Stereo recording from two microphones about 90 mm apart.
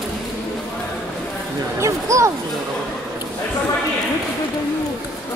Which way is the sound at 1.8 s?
35° right (ahead or behind).